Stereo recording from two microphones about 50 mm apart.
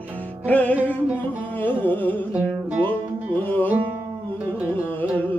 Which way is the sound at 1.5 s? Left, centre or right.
Left.